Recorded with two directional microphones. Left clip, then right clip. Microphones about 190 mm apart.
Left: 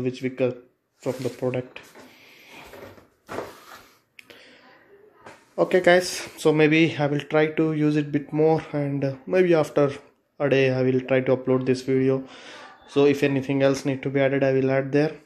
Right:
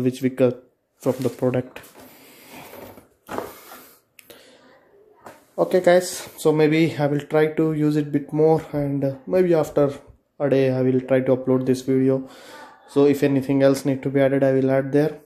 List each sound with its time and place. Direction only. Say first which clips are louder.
0.0 s speech: right 5 dB; 30° right (ahead or behind)
5.6 s speech: right 1 dB; 5° right (ahead or behind)